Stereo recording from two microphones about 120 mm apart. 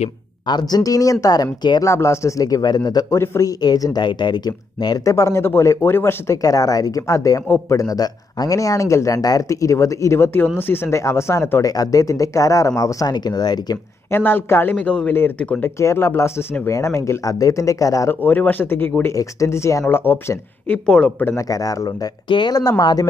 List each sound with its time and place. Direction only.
0.5 s speech: 35° left (ahead or behind)
1.8 s a man's voice: 25° left (ahead or behind)
14.1 s speech: 20° left (ahead or behind)
15.8 s a man's voice: 20° left (ahead or behind)
18.2 s a man's voice: 15° left (ahead or behind)
21.5 s speech: 30° left (ahead or behind)